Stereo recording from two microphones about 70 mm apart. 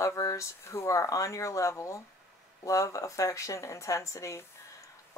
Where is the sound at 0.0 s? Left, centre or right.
Left.